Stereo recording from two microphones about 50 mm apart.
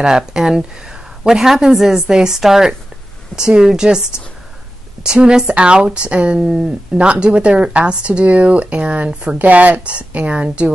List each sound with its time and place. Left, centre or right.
0.0 s a woman's voice: centre
5.0 s speech: centre